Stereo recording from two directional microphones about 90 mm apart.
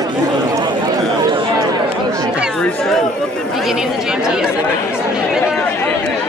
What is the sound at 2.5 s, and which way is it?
Speech, 10° left (ahead or behind).